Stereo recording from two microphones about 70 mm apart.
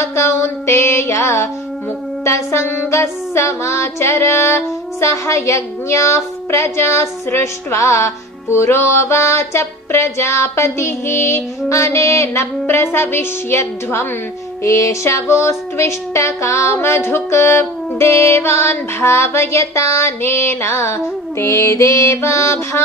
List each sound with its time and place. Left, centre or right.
0.0 s music: left
14.6 s a sound: left
16.7 s music: left